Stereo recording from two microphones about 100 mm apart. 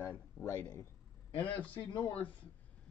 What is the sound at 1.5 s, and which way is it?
Speech, 20° left (ahead or behind).